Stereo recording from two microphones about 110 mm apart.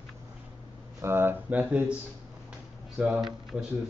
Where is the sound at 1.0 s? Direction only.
20° right (ahead or behind).